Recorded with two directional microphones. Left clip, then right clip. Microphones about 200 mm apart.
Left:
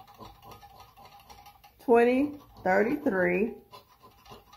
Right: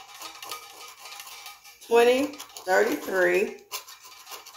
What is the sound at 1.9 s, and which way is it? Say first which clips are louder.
Speech: right 3 dB; 20° left (ahead or behind).